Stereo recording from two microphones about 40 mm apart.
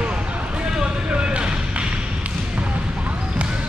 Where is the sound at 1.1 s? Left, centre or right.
Right.